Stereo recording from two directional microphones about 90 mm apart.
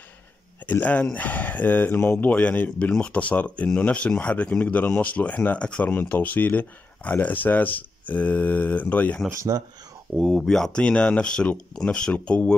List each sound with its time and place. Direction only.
0.7 s speech: 20° left (ahead or behind)
9.3 s speech: 40° right (ahead or behind)
10.1 s speech: centre (ahead or behind)